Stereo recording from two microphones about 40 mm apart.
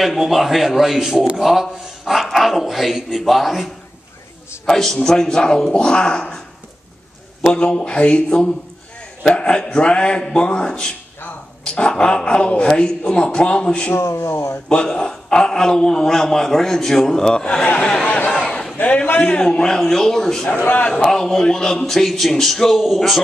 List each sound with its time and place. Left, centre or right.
0.0 s a man's voice: centre
4.6 s a man's voice: centre
7.4 s speech: left
9.2 s a sound: left
9.6 s speech: left
11.2 s a sound: left
11.9 s speech: centre
13.9 s speech: left
14.9 s a man's voice: centre
18.5 s a sound: centre
19.1 s a man's voice: left; by 20.4 s centre
20.4 s a man's voice: left
20.9 s a man's voice: centre